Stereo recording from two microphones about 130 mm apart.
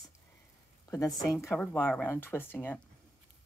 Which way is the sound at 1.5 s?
15° left (ahead or behind).